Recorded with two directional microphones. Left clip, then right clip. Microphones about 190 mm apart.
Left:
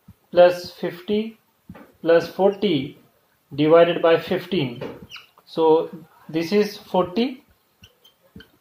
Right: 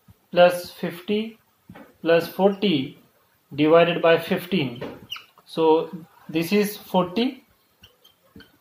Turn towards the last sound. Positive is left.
turn(degrees=-20)  # may be behind; listen again after turning